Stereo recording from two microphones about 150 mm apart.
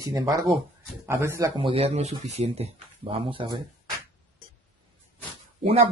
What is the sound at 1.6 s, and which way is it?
Speech, 40° right (ahead or behind).